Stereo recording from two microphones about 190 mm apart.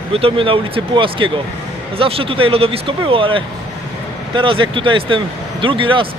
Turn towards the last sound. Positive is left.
turn(degrees=-25)  # may be behind; listen again after turning